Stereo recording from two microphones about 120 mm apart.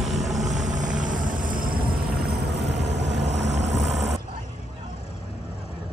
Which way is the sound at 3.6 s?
70° right (ahead or behind).